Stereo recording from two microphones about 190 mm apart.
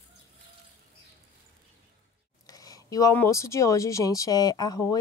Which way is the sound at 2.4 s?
20° left (ahead or behind).